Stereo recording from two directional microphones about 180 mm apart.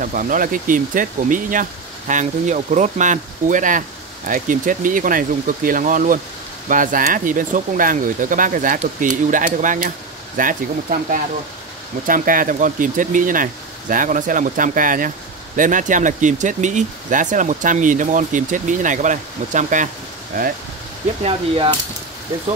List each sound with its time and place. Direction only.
0.0 s speech: 45° right (ahead or behind)
21.2 s speech: 30° right (ahead or behind)